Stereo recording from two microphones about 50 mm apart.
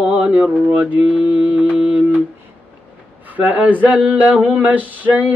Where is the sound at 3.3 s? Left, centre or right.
Right.